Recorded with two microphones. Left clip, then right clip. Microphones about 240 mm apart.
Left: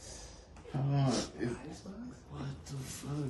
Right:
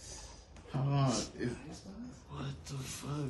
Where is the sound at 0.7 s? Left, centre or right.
Centre.